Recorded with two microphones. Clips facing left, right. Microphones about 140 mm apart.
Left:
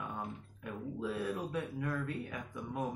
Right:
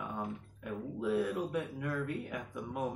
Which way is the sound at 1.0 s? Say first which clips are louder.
Right 5 dB; 15° right (ahead or behind).